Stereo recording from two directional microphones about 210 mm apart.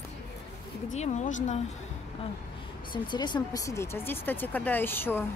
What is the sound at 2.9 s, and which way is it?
Speech, 20° left (ahead or behind).